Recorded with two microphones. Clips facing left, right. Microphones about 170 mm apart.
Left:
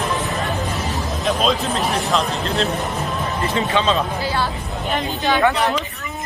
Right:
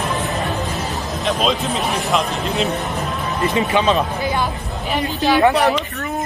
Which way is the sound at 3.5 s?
15° right (ahead or behind).